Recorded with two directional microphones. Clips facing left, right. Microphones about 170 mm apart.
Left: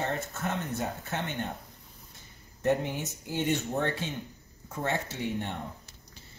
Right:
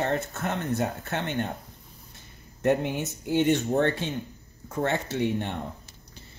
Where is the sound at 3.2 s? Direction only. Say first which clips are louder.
Right 7 dB; 65° right (ahead or behind).